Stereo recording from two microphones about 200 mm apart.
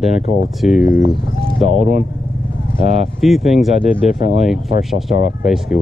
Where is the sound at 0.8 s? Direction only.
40° left (ahead or behind).